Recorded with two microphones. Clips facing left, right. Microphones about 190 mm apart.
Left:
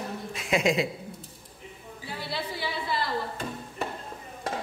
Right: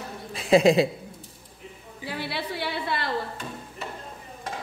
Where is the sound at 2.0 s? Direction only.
70° right (ahead or behind).